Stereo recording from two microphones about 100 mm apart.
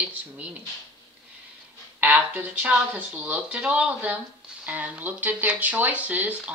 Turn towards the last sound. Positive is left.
turn(degrees=-15)  # may be behind; listen again after turning